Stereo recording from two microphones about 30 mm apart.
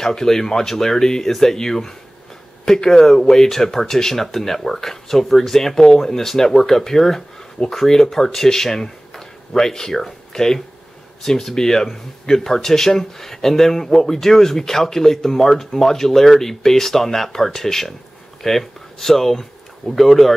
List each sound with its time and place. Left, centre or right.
0.0 s speech: centre
7.6 s speech: left
7.9 s speech: centre
9.1 s a sound: centre
11.2 s speech: centre